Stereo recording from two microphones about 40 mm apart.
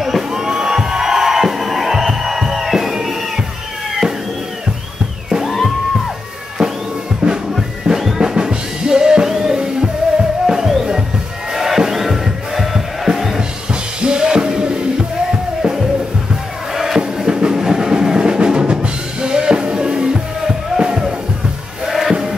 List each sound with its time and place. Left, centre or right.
0.0 s music: centre
6.6 s music: right
7.5 s music: centre
14.0 s music: right
17.3 s drum: centre
21.8 s music: centre